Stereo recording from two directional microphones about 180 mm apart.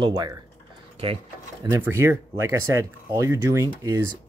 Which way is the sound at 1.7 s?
15° right (ahead or behind).